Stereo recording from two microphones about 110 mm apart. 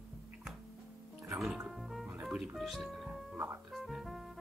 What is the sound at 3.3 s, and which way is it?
Speech, 20° right (ahead or behind).